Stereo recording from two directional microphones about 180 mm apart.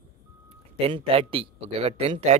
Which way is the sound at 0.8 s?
30° right (ahead or behind).